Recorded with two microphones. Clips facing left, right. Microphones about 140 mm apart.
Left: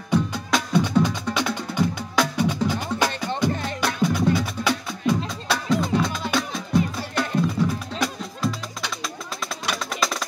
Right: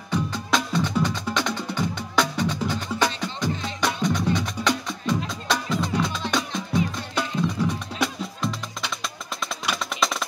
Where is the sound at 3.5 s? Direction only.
55° left (ahead or behind).